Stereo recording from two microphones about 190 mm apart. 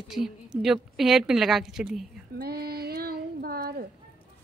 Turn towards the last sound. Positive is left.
turn(degrees=-50)  # may be behind; listen again after turning